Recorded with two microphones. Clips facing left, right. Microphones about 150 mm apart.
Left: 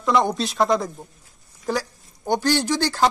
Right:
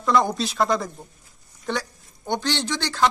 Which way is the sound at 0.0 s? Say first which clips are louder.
Left 1 dB; centre (ahead or behind).